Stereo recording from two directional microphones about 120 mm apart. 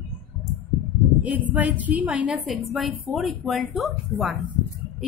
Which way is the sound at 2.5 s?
Centre (ahead or behind).